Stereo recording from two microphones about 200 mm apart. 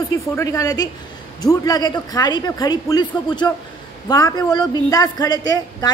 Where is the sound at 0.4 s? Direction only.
15° left (ahead or behind).